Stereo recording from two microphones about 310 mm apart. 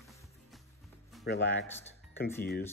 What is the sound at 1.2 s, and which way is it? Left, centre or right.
Speech, left.